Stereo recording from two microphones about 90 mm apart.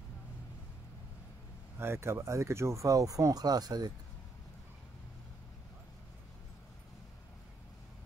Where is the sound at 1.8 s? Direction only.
30° right (ahead or behind); by 3.9 s 45° right (ahead or behind).